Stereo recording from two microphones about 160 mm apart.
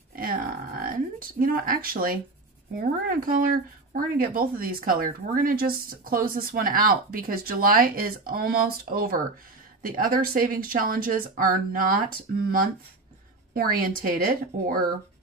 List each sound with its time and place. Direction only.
0.1 s music: 65° right (ahead or behind)
1.4 s speech: 65° right (ahead or behind)
13.5 s speech: 65° right (ahead or behind)